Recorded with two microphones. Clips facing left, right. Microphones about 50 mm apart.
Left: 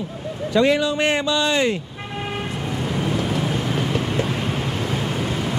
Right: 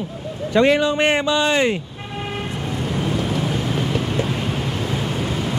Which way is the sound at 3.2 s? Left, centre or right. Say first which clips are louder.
Even; centre.